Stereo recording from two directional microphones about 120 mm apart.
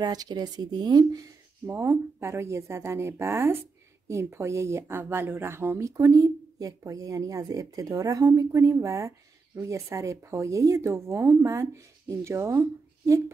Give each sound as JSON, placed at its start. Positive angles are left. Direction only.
{"t": 0.0, "sound": "speech", "side_deg": -35}
{"t": 1.7, "sound": "speech", "side_deg": -20}